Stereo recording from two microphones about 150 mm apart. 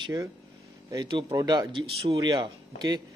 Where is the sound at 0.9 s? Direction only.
30° right (ahead or behind).